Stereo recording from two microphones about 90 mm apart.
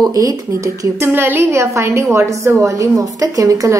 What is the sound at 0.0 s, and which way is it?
Speech, 40° right (ahead or behind).